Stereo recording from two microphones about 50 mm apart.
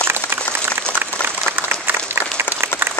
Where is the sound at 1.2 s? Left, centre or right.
Right.